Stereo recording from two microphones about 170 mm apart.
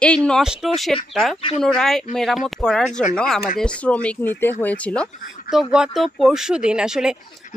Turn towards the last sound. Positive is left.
turn(degrees=-5)  # may be behind; listen again after turning